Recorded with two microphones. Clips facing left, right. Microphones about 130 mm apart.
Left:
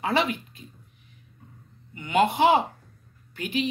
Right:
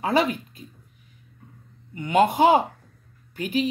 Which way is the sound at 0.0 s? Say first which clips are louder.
Right 3 dB; 40° right (ahead or behind).